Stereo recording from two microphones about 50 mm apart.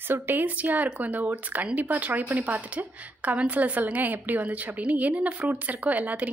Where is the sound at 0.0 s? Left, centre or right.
Right.